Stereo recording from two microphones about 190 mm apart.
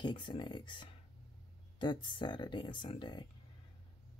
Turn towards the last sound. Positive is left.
turn(degrees=25)  # may be behind; listen again after turning